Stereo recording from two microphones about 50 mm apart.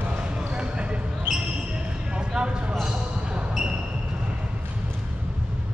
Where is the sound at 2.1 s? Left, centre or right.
Centre.